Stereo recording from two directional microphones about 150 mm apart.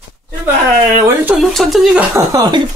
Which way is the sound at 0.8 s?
15° right (ahead or behind).